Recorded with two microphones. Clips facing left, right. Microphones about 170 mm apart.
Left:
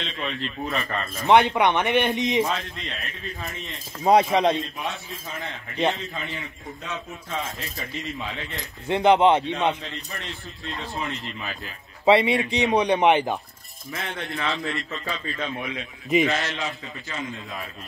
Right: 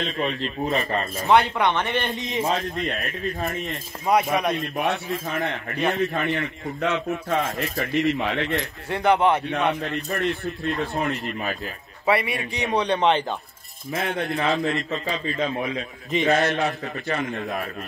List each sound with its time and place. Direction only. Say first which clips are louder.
0.0 s a man's voice: right 5 dB; 40° right (ahead or behind)
1.2 s speech: left 2 dB; 20° left (ahead or behind)
2.4 s a man's voice: right 4 dB; 40° right (ahead or behind)
2.8 s speech: right 8 dB; 55° right (ahead or behind)
4.0 s a man's voice: left 3 dB; 30° left (ahead or behind)
4.7 s a man's voice: right 8 dB; 65° right (ahead or behind)
8.8 s a man's voice: left 3 dB; 20° left (ahead or behind)
9.8 s speech: right 10 dB; 60° right (ahead or behind)
12.1 s a man's voice: left 5 dB; 25° left (ahead or behind)
13.9 s speech: right 7 dB; 55° right (ahead or behind)
14.3 s a man's voice: right 4 dB; 40° right (ahead or behind)
16.3 s a man's voice: right 7 dB; 50° right (ahead or behind)